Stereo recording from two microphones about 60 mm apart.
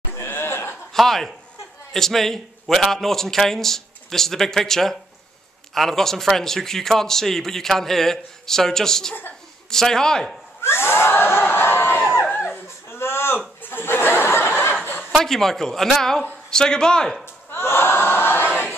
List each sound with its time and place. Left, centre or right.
0.1 s a sound: left
0.9 s a man's voice: centre
10.6 s crowd: left
12.5 s baby cry: left
13.6 s laughter: left
15.1 s a man's voice: centre
17.2 s a sound: left